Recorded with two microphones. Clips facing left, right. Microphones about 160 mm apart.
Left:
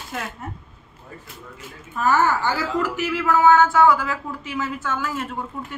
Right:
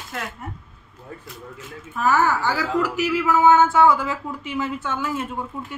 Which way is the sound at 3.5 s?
25° right (ahead or behind).